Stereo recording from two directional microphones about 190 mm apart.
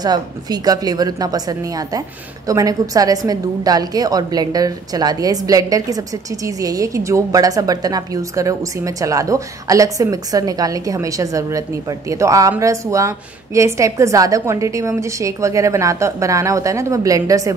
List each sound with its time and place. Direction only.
0.0 s a woman's voice: 20° right (ahead or behind)